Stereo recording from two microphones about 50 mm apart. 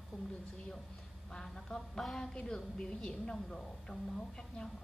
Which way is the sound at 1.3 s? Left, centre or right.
Centre.